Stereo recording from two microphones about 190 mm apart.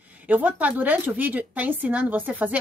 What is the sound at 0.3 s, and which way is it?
A woman's voice, 10° right (ahead or behind).